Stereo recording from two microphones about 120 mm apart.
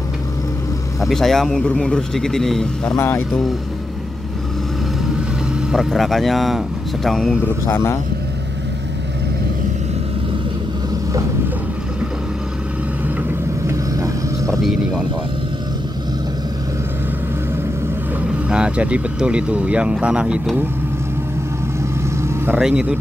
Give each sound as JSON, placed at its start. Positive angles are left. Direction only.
{"t": 1.0, "sound": "a man's voice", "side_deg": 0}
{"t": 3.0, "sound": "speech", "side_deg": 20}
{"t": 5.7, "sound": "a man's voice", "side_deg": 0}
{"t": 7.4, "sound": "speech", "side_deg": 20}
{"t": 13.7, "sound": "vehicle", "side_deg": -25}
{"t": 18.5, "sound": "speech", "side_deg": -10}
{"t": 22.0, "sound": "vehicle", "side_deg": -20}
{"t": 22.6, "sound": "a man's voice", "side_deg": -5}